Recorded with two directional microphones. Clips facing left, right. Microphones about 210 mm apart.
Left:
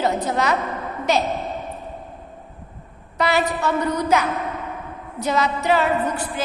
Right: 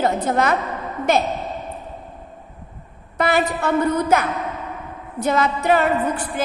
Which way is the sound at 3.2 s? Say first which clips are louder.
Right 1 dB; 55° right (ahead or behind).